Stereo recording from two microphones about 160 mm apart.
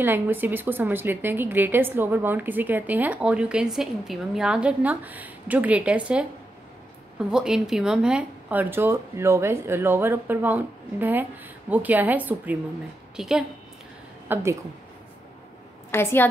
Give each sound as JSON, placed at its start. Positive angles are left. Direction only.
{"t": 0.0, "sound": "a woman's voice", "side_deg": -15}
{"t": 14.3, "sound": "a woman's voice", "side_deg": -15}
{"t": 15.9, "sound": "a woman's voice", "side_deg": 15}